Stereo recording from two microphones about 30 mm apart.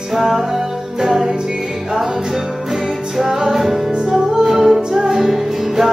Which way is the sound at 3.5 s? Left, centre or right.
Centre.